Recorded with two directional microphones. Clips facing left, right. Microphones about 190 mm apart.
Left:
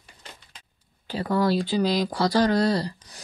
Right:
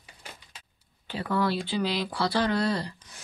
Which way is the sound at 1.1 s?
40° left (ahead or behind).